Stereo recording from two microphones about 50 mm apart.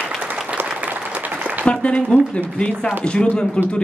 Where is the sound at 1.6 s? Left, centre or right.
Centre.